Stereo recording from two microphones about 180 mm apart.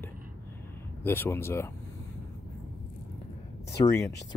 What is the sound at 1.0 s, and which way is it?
Speech, 10° left (ahead or behind).